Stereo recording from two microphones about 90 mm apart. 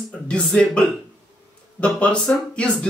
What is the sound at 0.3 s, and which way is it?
Speech, 10° left (ahead or behind).